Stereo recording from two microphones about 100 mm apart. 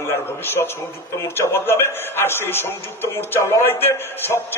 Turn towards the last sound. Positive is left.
turn(degrees=20)  # may be behind; listen again after turning